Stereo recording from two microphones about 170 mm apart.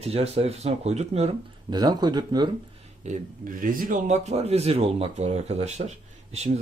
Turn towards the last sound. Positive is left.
turn(degrees=-40)  # may be behind; listen again after turning